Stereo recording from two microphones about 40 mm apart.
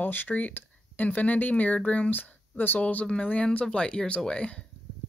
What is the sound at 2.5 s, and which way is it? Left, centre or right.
Speech, left.